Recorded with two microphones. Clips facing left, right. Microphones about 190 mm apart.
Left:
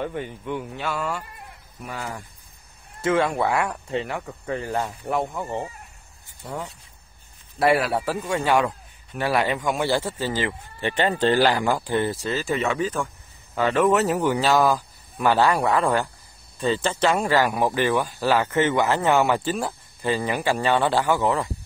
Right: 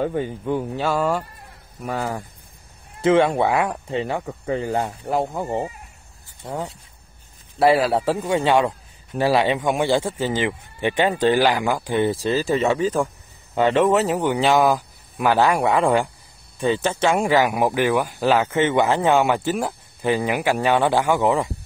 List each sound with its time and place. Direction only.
0.0 s speech: 30° right (ahead or behind)
3.0 s a man's voice: 20° right (ahead or behind)
7.7 s a man's voice: 25° right (ahead or behind)
12.4 s a man's voice: 35° right (ahead or behind)
14.2 s speech: 15° right (ahead or behind)